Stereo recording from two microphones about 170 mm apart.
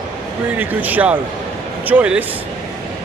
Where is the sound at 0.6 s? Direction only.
10° right (ahead or behind).